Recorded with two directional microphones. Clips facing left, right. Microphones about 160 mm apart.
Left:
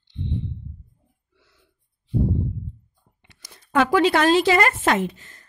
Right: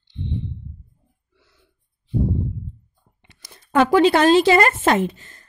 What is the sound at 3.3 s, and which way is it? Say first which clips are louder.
A woman's voice: right 2 dB; 25° right (ahead or behind).